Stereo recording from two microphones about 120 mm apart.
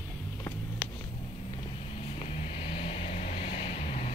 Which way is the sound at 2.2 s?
60° left (ahead or behind).